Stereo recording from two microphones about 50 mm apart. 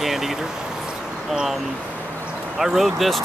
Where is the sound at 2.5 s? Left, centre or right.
Centre.